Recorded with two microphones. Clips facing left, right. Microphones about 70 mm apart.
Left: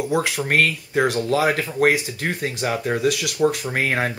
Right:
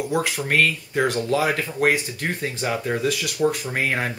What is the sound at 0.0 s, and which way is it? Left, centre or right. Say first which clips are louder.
Speech: left 2 dB; left.